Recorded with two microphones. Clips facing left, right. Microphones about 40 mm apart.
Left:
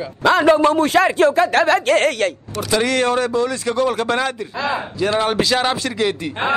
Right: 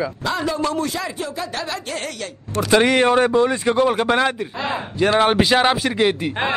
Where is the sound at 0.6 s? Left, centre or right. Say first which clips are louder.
Left 7 dB; left.